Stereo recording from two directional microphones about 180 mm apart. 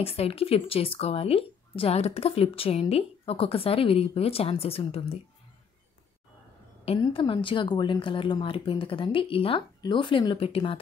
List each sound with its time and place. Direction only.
0.0 s speech: 35° left (ahead or behind)
7.0 s speech: 30° left (ahead or behind)